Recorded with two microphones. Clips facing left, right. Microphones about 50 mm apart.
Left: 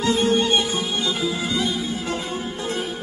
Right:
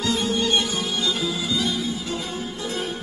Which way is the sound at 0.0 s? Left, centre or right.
Left.